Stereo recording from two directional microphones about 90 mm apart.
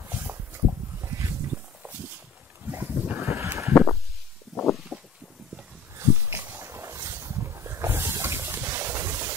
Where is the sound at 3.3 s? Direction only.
30° right (ahead or behind).